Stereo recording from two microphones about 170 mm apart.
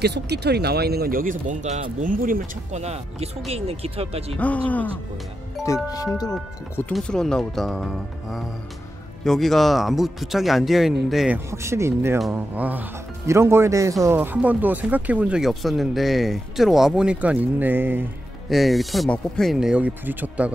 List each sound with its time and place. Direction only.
0.0 s speech: 75° right (ahead or behind); by 4.4 s 35° right (ahead or behind)
4.4 s speech: 10° left (ahead or behind)
5.7 s speech: 20° left (ahead or behind)
6.9 s speech: 5° left (ahead or behind)
11.3 s speech: 15° right (ahead or behind)
18.5 s speech: centre (ahead or behind)